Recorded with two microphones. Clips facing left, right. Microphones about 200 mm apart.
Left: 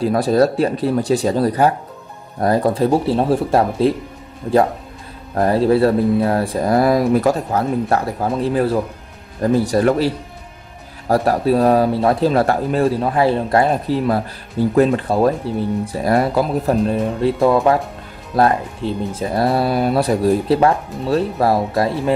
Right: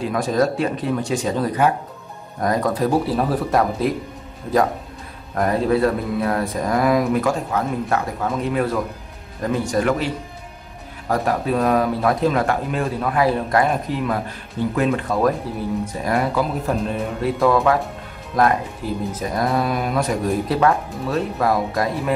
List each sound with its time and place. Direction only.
0.0 s speech: 35° left (ahead or behind)
5.3 s speech: 30° left (ahead or behind)